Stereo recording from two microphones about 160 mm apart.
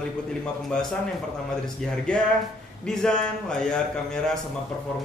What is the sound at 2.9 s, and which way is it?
A man's voice, 5° left (ahead or behind).